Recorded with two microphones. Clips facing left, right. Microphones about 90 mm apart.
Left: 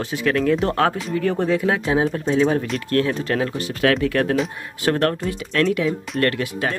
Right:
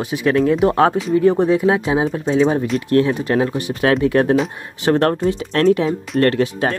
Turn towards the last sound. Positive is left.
turn(degrees=-30)  # may be behind; listen again after turning